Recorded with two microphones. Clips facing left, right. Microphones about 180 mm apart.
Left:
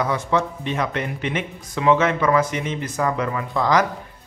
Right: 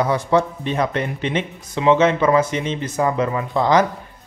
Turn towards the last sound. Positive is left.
turn(degrees=-25)  # may be behind; listen again after turning